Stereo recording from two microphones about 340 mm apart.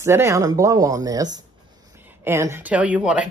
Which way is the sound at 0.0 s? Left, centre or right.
Centre.